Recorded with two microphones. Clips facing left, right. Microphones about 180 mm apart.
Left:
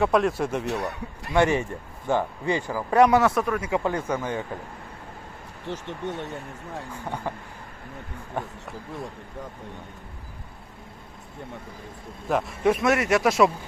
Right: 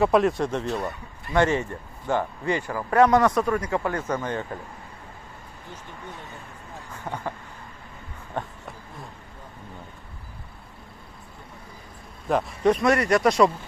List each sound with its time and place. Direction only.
0.0 s speech: centre (ahead or behind)
0.7 s speech: 70° left (ahead or behind)
1.3 s speech: 15° left (ahead or behind)
5.7 s speech: 75° left (ahead or behind)
6.9 s speech: 10° left (ahead or behind)
8.4 s speech: 10° left (ahead or behind)
12.3 s speech: centre (ahead or behind)